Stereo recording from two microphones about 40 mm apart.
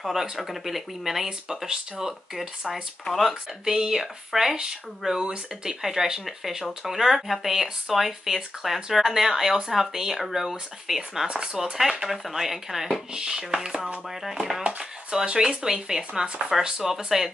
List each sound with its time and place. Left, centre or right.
0.0 s speech: centre
3.1 s speech: centre
3.6 s speech: centre
5.8 s speech: centre